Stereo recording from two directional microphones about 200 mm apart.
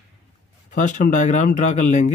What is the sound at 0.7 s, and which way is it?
Speech, 40° left (ahead or behind).